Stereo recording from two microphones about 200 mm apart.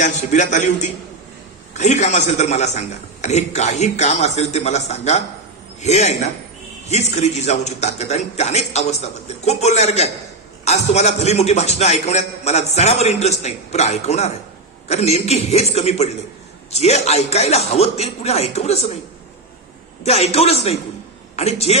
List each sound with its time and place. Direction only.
0.0 s a man's voice: 35° left (ahead or behind)
20.0 s a man's voice: 30° left (ahead or behind)